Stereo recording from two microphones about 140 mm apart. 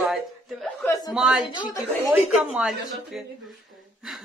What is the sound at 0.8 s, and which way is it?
Speech, 25° left (ahead or behind).